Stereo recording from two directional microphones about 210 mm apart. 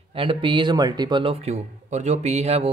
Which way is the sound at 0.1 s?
25° right (ahead or behind).